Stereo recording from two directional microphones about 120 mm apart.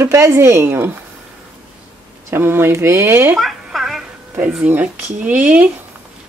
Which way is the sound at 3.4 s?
Centre (ahead or behind).